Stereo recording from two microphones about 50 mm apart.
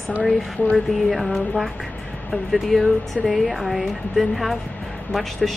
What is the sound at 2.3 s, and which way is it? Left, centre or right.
Speech, centre.